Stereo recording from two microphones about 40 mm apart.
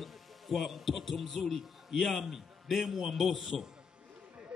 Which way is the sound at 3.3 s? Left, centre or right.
Centre.